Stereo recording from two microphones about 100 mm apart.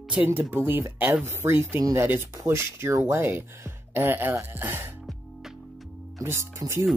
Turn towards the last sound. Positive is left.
turn(degrees=-30)  # may be behind; listen again after turning